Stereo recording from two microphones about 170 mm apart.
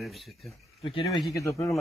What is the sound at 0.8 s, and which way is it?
Speech, 30° left (ahead or behind).